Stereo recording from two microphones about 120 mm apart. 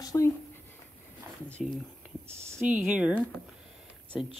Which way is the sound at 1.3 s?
20° right (ahead or behind).